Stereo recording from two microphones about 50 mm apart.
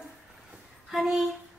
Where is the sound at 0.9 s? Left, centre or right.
Centre.